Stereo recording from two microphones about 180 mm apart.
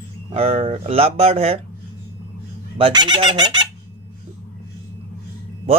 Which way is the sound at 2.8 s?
25° right (ahead or behind).